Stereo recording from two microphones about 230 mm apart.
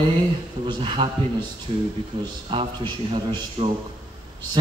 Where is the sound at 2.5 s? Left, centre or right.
Right.